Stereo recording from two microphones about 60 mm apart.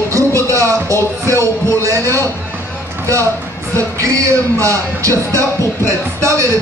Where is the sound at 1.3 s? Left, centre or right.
Left.